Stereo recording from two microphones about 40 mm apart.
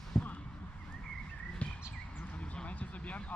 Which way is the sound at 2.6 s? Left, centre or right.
Left.